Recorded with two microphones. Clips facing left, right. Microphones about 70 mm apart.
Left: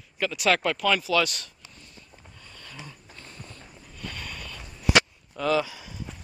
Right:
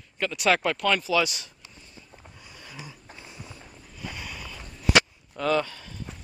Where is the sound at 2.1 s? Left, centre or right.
Centre.